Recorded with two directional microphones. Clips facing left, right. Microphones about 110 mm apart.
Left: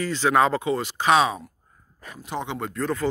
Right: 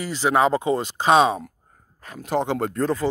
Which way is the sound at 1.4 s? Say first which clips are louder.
Right 5 dB; 55° right (ahead or behind).